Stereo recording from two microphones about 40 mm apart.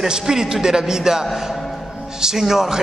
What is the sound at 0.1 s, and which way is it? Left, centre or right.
A man's voice, centre.